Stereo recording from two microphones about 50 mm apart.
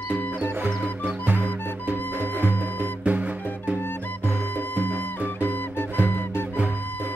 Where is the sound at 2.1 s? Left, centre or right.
Right.